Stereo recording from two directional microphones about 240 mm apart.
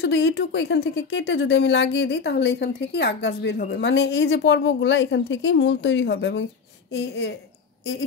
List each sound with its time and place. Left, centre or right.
0.0 s speech: left